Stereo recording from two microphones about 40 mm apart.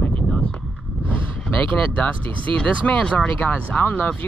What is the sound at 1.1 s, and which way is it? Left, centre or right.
Speech, left.